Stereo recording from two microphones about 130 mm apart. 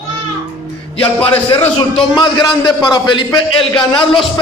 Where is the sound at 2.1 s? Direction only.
35° left (ahead or behind).